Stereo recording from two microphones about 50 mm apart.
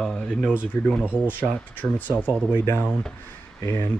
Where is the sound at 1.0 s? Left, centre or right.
Right.